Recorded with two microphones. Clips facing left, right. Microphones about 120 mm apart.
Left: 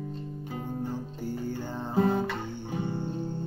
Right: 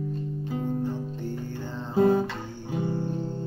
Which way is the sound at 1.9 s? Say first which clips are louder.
Right 5 dB; 15° right (ahead or behind).